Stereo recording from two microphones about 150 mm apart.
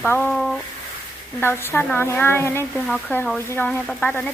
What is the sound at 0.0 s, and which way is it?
Speech, 10° left (ahead or behind).